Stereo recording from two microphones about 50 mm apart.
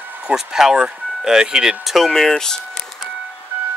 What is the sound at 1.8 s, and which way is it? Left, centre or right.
Speech, centre.